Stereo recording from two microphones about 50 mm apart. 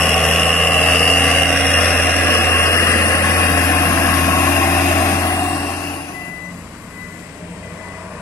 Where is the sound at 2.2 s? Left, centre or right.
Left.